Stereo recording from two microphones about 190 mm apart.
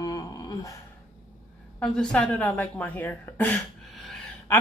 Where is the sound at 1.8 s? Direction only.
5° left (ahead or behind).